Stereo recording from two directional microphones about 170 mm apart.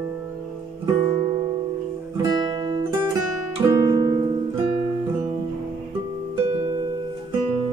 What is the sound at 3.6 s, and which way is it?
Music, 20° right (ahead or behind).